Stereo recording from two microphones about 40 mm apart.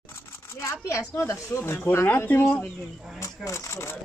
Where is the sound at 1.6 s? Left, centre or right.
Left.